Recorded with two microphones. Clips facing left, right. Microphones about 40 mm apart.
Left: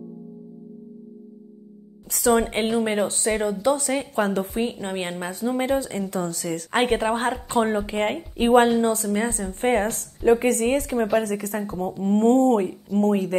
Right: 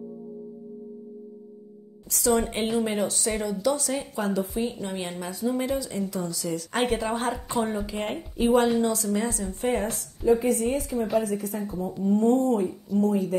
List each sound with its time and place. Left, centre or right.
2.0 s a woman's voice: left
8.8 s a woman's voice: left